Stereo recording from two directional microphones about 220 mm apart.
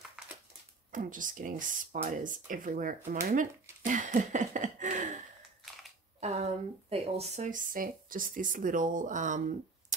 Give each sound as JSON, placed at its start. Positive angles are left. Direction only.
{"t": 0.9, "sound": "speech", "side_deg": -35}
{"t": 6.2, "sound": "speech", "side_deg": -30}